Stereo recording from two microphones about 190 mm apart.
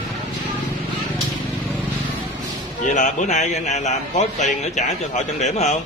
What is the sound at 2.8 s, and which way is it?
A man's voice, 40° left (ahead or behind).